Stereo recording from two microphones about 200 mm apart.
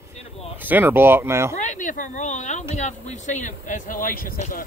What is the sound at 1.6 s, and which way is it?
Speech, 40° left (ahead or behind).